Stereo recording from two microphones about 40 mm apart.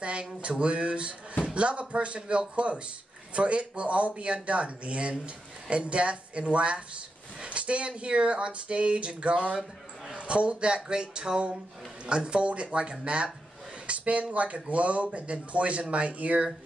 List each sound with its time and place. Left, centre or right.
0.0 s speech: right